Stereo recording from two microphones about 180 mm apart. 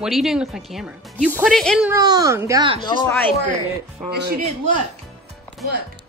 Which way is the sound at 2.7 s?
25° left (ahead or behind).